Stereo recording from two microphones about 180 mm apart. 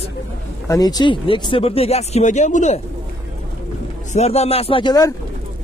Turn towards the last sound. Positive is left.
turn(degrees=20)  # may be behind; listen again after turning